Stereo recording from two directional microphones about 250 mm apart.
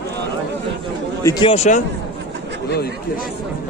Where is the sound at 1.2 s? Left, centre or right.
Centre.